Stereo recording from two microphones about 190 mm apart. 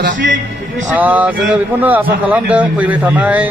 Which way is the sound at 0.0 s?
70° right (ahead or behind).